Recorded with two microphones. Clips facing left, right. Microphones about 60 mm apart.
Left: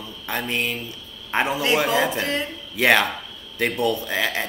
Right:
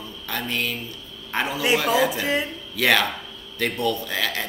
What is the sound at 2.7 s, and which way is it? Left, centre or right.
A man's voice, left.